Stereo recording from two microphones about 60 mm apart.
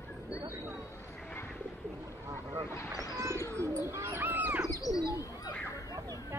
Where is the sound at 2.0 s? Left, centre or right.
Right.